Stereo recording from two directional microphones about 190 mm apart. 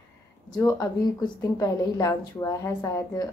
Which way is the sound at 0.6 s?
15° left (ahead or behind).